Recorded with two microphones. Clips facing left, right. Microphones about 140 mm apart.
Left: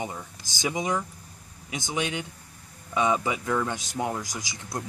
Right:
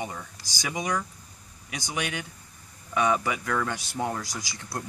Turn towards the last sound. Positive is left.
turn(degrees=20)  # may be behind; listen again after turning